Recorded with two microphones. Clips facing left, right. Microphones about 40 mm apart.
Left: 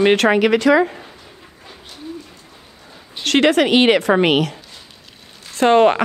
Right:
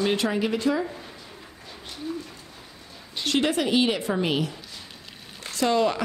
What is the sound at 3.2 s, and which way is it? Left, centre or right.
A woman's voice, left.